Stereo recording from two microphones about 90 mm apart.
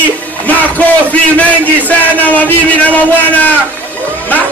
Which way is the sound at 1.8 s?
20° left (ahead or behind).